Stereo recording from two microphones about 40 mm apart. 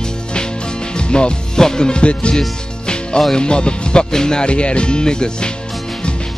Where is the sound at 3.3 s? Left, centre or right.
Left.